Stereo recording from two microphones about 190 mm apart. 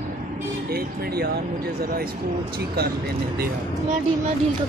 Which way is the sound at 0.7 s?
55° right (ahead or behind).